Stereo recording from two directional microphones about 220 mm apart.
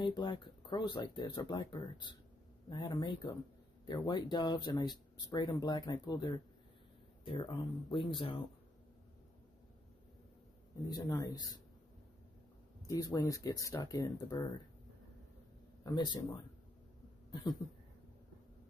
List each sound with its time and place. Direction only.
0.0 s speech: 20° left (ahead or behind)
7.9 s speech: 25° left (ahead or behind)
10.9 s speech: 15° left (ahead or behind)
12.8 s speech: 15° left (ahead or behind)
15.8 s speech: 20° left (ahead or behind)
17.3 s a sound: 20° left (ahead or behind)